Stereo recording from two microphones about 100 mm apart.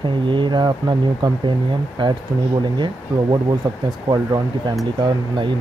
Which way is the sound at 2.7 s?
50° right (ahead or behind).